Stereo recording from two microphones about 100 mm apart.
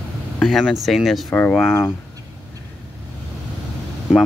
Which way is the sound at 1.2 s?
15° left (ahead or behind).